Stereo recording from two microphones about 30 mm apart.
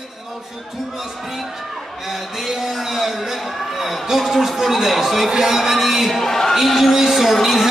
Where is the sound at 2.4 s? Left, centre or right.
Centre.